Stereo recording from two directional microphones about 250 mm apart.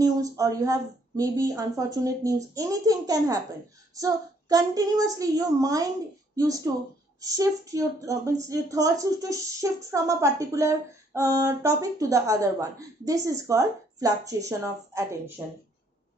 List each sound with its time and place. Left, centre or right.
0.0 s speech: centre